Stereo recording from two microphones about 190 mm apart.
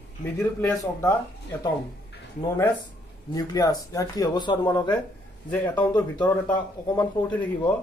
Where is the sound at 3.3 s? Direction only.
20° left (ahead or behind).